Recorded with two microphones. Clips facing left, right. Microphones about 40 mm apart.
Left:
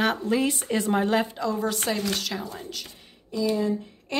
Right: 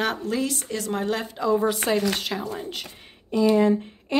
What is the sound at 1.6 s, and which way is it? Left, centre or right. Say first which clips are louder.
Speech: right 4 dB; centre.